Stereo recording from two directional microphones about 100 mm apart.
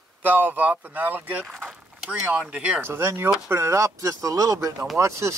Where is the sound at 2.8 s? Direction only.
25° right (ahead or behind).